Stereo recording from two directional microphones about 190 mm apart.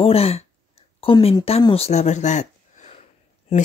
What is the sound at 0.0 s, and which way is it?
Speech, 30° left (ahead or behind).